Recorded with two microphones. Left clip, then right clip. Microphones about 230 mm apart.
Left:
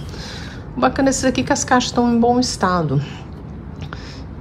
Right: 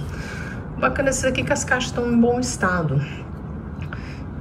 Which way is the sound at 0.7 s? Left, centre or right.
Centre.